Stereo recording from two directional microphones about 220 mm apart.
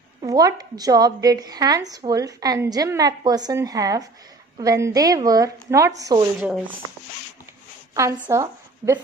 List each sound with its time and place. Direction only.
0.2 s speech: 15° right (ahead or behind)
7.9 s a woman's voice: 15° right (ahead or behind)